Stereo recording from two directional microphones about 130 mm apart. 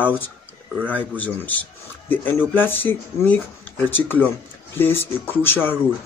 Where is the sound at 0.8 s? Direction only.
10° left (ahead or behind).